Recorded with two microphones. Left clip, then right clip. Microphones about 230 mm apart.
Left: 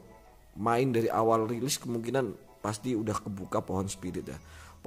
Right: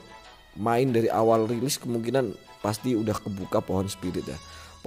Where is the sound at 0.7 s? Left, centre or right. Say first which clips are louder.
Right 4 dB; centre.